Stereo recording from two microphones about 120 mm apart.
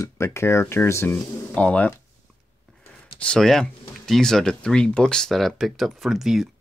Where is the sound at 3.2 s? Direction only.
5° left (ahead or behind).